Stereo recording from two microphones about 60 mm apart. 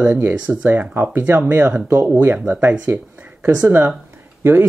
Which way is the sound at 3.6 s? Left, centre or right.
Right.